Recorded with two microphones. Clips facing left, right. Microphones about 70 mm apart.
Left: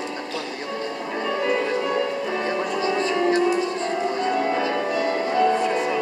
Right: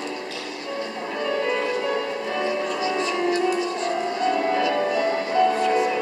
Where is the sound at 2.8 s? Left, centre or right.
Left.